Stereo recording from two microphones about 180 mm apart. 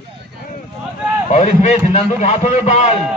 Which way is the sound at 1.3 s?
40° left (ahead or behind).